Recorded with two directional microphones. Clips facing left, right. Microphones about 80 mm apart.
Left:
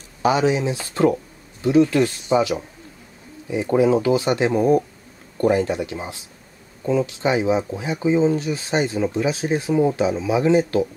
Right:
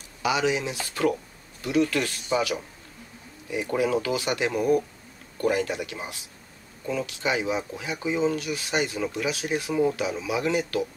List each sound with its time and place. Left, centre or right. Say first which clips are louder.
0.2 s speech: left 6 dB; left